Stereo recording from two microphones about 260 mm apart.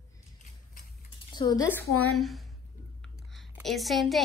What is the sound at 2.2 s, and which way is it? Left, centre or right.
A woman's voice, centre.